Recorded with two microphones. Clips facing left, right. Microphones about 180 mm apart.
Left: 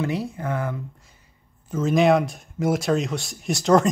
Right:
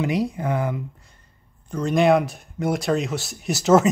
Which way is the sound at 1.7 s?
5° left (ahead or behind).